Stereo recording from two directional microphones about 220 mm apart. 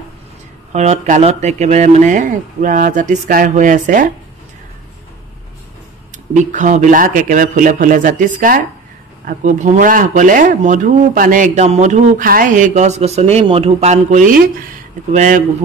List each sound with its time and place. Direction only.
0.7 s speech: 35° right (ahead or behind)
6.1 s speech: 35° right (ahead or behind)